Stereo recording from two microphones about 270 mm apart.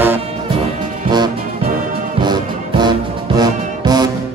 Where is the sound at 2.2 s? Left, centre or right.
Centre.